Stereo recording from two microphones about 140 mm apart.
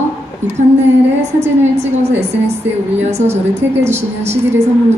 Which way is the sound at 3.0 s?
50° right (ahead or behind).